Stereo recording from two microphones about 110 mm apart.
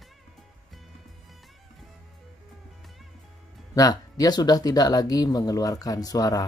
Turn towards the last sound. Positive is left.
turn(degrees=35)  # may be behind; listen again after turning